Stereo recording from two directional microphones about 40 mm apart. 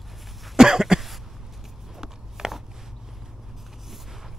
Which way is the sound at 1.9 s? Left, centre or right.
Centre.